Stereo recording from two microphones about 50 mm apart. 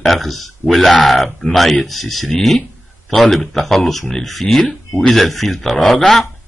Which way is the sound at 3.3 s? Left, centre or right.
Centre.